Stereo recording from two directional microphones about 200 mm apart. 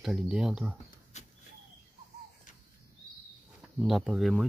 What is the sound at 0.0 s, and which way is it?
Speech, 5° right (ahead or behind).